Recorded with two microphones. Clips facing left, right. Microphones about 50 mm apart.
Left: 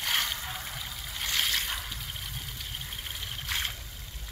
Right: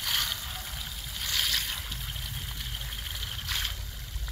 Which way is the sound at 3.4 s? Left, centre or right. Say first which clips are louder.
Left 1 dB; left.